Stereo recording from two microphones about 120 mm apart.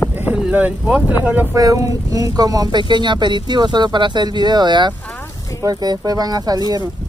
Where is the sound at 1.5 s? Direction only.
25° right (ahead or behind).